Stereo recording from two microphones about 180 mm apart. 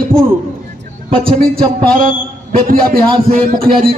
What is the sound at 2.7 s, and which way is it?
Speech, 55° right (ahead or behind).